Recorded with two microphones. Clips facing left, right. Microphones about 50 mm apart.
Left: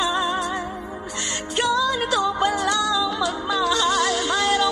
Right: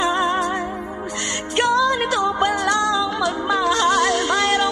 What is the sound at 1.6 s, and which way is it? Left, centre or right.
Music, right.